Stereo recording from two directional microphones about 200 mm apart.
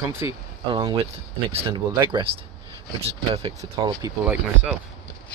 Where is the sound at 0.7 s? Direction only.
25° right (ahead or behind).